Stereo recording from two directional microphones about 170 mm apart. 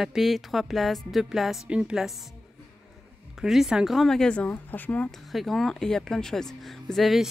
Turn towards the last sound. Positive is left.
turn(degrees=0)  # may be behind; listen again after turning